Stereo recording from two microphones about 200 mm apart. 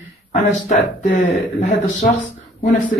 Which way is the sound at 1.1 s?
40° left (ahead or behind).